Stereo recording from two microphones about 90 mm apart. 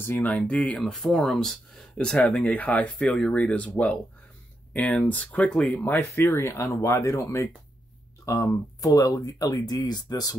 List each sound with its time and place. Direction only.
0.0 s speech: 20° left (ahead or behind); by 10.3 s 50° left (ahead or behind)